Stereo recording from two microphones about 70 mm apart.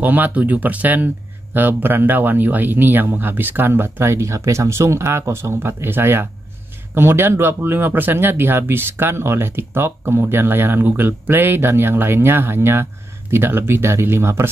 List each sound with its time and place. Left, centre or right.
0.0 s speech: right